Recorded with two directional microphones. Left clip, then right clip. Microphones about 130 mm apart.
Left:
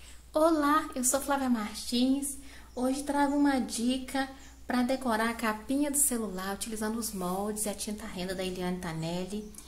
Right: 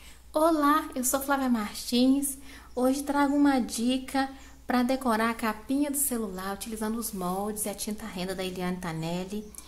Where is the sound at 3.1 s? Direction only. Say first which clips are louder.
Right 1 dB; 20° right (ahead or behind).